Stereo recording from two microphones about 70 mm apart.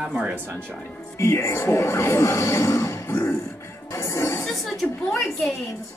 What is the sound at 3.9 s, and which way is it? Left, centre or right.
Music, left.